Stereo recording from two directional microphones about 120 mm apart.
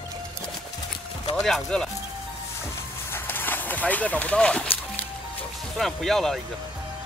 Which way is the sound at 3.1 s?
15° left (ahead or behind).